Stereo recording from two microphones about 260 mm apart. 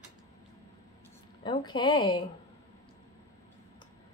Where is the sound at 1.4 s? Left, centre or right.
Centre.